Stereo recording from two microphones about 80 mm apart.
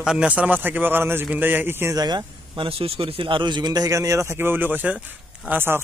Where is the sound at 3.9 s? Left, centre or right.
Right.